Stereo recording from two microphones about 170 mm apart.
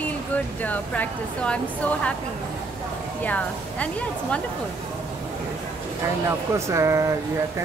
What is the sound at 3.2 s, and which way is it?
Speech, 10° left (ahead or behind).